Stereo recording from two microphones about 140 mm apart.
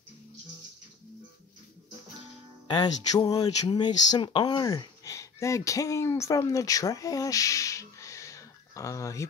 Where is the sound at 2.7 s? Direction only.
30° left (ahead or behind).